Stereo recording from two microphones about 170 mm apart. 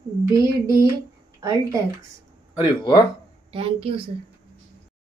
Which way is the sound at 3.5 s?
30° right (ahead or behind).